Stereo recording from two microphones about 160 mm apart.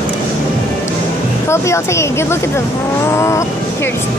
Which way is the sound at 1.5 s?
15° left (ahead or behind).